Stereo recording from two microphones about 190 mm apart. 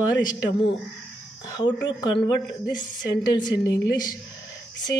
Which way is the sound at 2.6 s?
20° left (ahead or behind).